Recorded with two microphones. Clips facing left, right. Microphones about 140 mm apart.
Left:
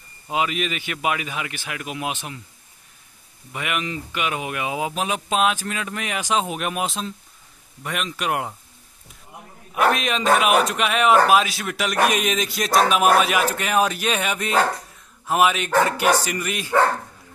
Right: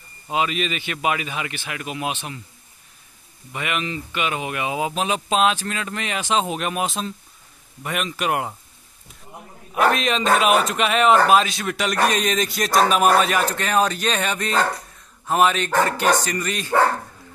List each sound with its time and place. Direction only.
0.3 s speech: 10° left (ahead or behind)
3.5 s speech: 10° left (ahead or behind)
9.8 s speech: centre (ahead or behind)